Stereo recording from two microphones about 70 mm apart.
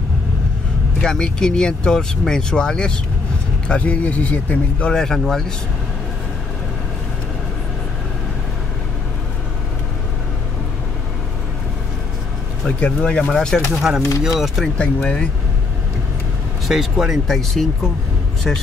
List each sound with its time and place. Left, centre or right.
1.0 s speech: centre
12.6 s speech: centre
13.7 s speech: centre
14.8 s speech: centre
16.6 s speech: centre
17.4 s speech: centre